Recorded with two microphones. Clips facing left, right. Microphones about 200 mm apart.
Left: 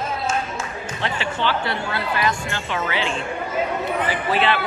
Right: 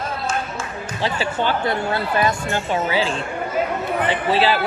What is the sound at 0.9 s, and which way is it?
Speech, 35° right (ahead or behind).